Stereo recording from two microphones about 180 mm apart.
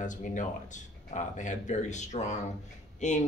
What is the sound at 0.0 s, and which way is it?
Speech, 45° left (ahead or behind).